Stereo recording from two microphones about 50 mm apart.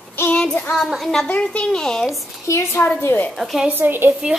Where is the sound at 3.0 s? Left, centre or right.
Left.